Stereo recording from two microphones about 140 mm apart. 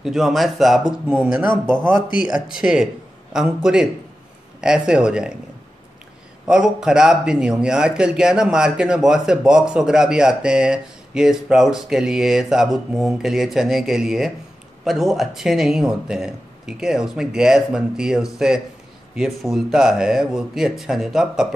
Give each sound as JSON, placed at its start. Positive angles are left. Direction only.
{"t": 0.0, "sound": "a man's voice", "side_deg": 0}
{"t": 1.5, "sound": "speech", "side_deg": 35}
{"t": 2.2, "sound": "a man's voice", "side_deg": -5}
{"t": 6.4, "sound": "a man's voice", "side_deg": -5}